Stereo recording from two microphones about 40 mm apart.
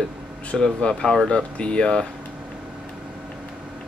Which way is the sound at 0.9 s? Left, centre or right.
Centre.